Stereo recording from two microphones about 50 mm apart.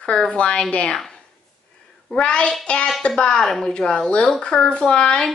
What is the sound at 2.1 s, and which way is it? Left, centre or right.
Speech, centre.